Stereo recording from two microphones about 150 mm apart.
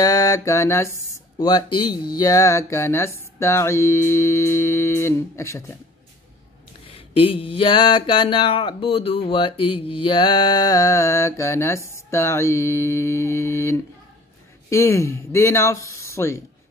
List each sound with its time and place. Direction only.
0.0 s mantra: 25° left (ahead or behind)
1.4 s speech: 30° left (ahead or behind)
6.9 s mantra: 40° left (ahead or behind); by 16.4 s 20° left (ahead or behind)